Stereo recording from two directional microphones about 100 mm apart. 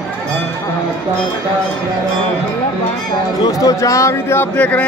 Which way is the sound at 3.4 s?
35° left (ahead or behind).